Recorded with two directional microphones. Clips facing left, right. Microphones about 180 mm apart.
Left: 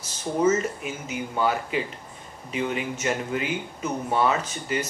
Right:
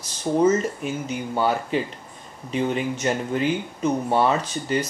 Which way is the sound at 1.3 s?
30° right (ahead or behind).